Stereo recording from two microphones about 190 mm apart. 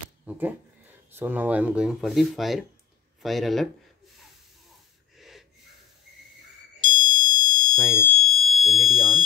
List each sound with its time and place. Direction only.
0.2 s speech: 10° right (ahead or behind)
5.1 s snort: centre (ahead or behind)
6.8 s smoke detector: 25° left (ahead or behind)
7.5 s fire alarm: 5° left (ahead or behind)